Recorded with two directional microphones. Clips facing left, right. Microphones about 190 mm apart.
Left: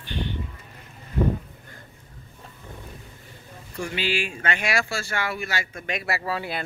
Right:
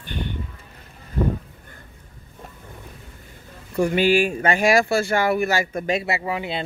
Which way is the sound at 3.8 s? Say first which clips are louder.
Right 10 dB; 50° right (ahead or behind).